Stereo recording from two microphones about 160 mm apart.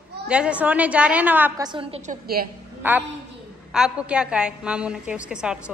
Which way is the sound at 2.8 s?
10° right (ahead or behind).